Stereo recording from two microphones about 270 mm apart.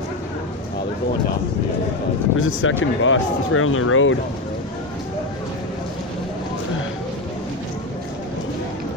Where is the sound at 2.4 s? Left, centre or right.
Left.